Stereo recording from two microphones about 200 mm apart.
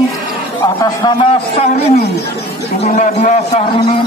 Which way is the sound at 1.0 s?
25° left (ahead or behind).